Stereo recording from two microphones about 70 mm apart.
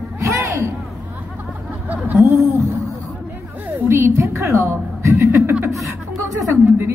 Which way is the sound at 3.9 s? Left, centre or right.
Right.